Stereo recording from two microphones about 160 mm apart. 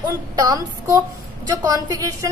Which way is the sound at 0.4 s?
20° right (ahead or behind).